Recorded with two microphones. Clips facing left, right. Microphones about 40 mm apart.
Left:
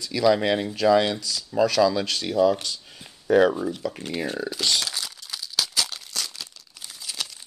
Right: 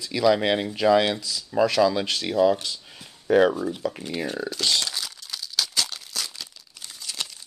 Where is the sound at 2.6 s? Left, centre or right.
Centre.